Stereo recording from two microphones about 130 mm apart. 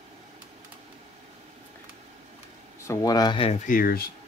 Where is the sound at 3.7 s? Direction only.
90° left.